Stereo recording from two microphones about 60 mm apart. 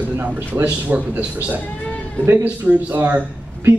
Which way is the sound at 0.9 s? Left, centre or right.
Right.